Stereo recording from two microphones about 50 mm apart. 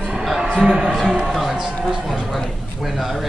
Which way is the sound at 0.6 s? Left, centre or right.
Centre.